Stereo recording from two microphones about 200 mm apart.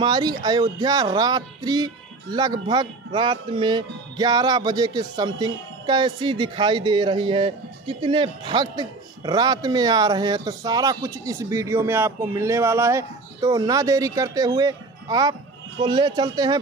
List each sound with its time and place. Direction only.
0.0 s a man's voice: 20° right (ahead or behind)